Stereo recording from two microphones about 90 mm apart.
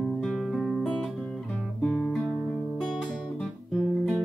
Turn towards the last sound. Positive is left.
turn(degrees=0)  # may be behind; listen again after turning